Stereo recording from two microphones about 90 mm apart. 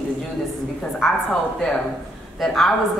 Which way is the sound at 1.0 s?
5° left (ahead or behind).